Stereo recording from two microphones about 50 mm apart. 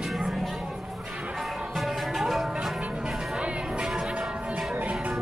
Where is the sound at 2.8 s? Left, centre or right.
Centre.